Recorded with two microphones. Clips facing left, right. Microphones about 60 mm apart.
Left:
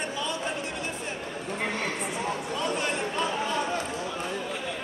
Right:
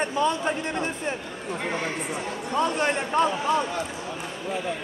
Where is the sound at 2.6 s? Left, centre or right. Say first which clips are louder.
Right 7 dB; right.